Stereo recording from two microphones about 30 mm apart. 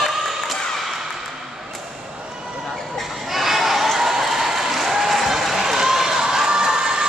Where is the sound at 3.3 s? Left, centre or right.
Centre; by 7.0 s right.